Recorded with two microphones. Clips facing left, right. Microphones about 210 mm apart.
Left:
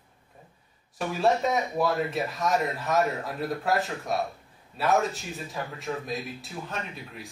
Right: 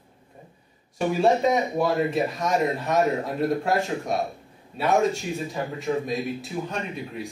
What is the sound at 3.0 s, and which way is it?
Speech, 25° right (ahead or behind).